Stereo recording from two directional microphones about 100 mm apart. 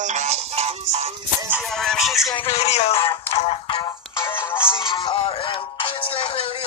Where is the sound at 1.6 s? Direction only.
5° left (ahead or behind).